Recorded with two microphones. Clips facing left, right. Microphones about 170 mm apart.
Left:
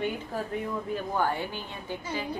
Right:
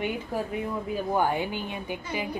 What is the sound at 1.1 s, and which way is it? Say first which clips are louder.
A woman's voice: right 4 dB; 15° right (ahead or behind).